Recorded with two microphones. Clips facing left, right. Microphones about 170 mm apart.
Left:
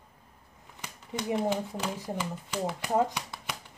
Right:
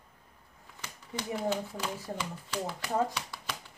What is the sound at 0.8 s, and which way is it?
Speech, 20° left (ahead or behind).